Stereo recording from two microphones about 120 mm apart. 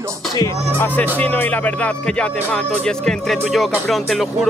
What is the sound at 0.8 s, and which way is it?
Speech, 15° left (ahead or behind).